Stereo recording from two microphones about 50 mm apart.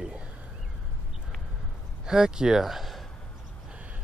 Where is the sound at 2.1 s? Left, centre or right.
Centre.